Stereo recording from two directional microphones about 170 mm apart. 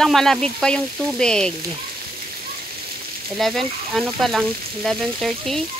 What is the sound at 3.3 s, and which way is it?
Frying, centre (ahead or behind).